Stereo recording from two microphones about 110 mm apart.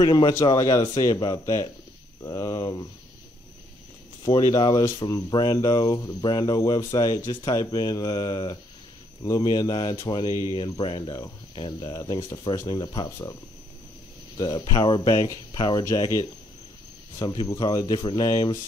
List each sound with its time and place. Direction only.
0.0 s speech: 40° left (ahead or behind)
1.1 s speech: 40° left (ahead or behind)
1.4 s speech: 30° left (ahead or behind)
4.2 s speech: 35° left (ahead or behind)
11.9 s speech: 30° left (ahead or behind)
12.6 s speech: 40° left (ahead or behind)
15.8 s speech: 25° left (ahead or behind)
17.2 s speech: 40° left (ahead or behind)